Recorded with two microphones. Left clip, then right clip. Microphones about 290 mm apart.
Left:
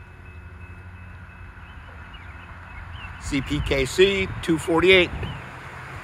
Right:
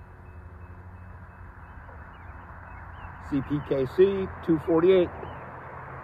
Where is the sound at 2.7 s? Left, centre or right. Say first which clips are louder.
Left 5 dB; left.